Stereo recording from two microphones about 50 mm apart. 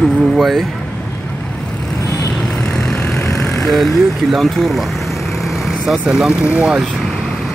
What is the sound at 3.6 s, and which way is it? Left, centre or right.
Speech, centre.